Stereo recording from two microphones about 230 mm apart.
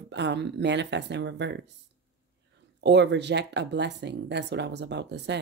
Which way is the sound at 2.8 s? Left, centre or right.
Right.